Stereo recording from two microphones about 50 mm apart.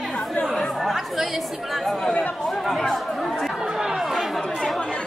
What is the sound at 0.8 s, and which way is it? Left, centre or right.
Speech, centre.